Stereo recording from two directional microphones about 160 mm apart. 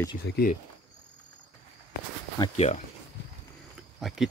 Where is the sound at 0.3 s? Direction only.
90° left.